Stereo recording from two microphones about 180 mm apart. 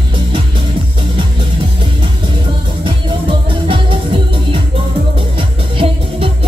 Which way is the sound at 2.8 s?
30° right (ahead or behind).